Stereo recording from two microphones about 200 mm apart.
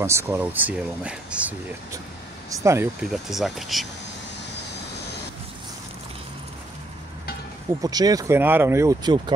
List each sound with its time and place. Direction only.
0.0 s speech: 10° right (ahead or behind)
2.5 s speech: 15° right (ahead or behind)
3.1 s speech: centre (ahead or behind)
7.8 s speech: 20° right (ahead or behind)